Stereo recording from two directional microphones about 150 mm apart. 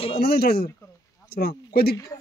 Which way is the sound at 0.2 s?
90° left.